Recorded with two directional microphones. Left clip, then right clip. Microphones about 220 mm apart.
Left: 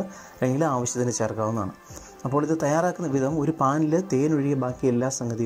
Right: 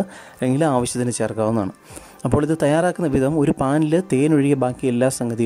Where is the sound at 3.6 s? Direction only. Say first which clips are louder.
Right 3 dB; 35° right (ahead or behind).